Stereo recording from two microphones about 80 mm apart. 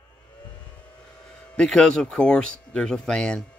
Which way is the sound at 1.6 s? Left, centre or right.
Centre.